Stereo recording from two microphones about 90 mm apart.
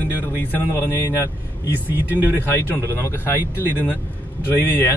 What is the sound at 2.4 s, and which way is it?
Speech, 25° left (ahead or behind).